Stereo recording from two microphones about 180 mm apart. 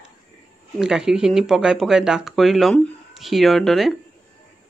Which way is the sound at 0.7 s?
5° right (ahead or behind).